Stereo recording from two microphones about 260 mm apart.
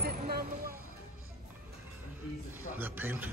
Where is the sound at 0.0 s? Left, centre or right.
Right.